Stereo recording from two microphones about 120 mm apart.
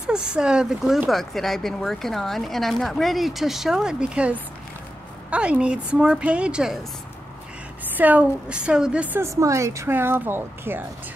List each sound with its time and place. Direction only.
0.0 s a woman's voice: 5° right (ahead or behind)
7.8 s a woman's voice: 15° right (ahead or behind)
9.2 s speech: 25° right (ahead or behind)